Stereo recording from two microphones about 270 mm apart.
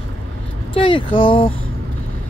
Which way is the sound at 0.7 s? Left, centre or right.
Centre.